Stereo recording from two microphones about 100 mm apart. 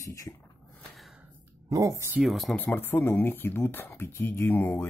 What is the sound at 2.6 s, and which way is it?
Speech, 20° left (ahead or behind).